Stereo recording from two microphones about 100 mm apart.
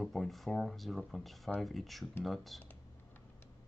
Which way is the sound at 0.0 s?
Centre (ahead or behind).